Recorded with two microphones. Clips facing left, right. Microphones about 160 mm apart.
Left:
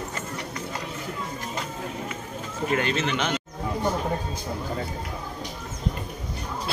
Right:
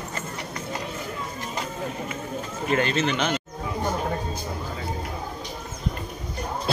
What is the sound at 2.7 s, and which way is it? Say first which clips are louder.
Speech: right 2 dB; 10° left (ahead or behind).